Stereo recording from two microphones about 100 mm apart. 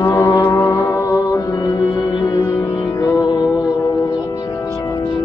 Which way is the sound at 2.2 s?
35° left (ahead or behind).